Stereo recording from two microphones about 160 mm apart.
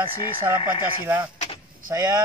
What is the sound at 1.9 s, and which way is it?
Speech, 25° right (ahead or behind).